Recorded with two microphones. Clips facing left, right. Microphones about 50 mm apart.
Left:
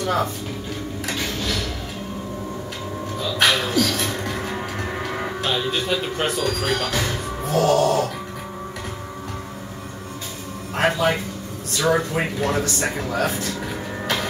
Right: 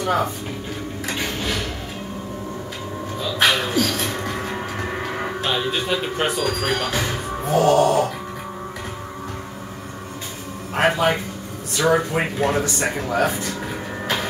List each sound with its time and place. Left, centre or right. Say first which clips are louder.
0.0 s speech: right 1 dB; centre
1.0 s a sound: right 1 dB; centre
3.2 s music: right 1 dB; centre
10.7 s speech: right 1 dB; centre